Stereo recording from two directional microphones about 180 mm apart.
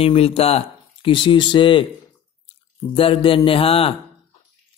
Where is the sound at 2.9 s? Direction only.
30° left (ahead or behind).